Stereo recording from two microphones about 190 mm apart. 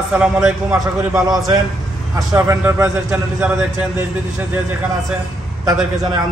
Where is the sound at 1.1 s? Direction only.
20° right (ahead or behind).